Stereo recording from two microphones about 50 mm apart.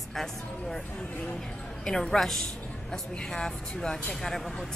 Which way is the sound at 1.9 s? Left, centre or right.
Centre.